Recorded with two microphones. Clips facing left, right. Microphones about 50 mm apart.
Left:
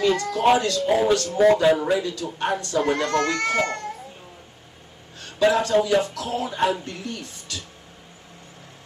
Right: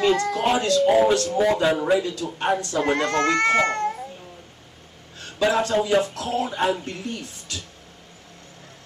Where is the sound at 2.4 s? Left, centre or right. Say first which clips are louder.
Even; right.